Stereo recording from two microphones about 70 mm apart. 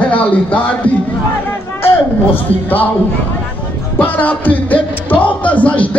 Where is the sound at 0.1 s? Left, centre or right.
Centre.